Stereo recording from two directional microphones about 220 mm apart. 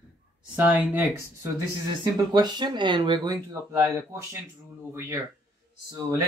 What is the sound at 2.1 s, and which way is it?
Speech, 20° right (ahead or behind).